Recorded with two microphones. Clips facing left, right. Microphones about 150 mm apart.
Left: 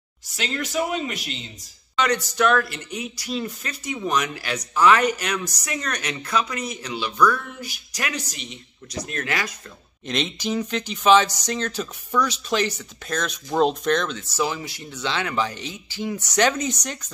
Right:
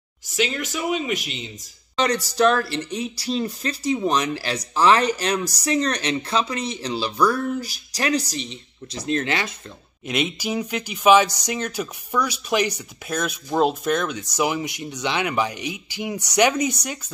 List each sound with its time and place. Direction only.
0.4 s speech: centre (ahead or behind)
2.0 s speech: 35° right (ahead or behind)
10.0 s speech: 10° right (ahead or behind)